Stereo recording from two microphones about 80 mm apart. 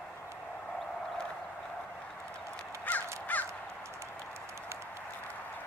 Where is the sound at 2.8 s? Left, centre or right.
Left.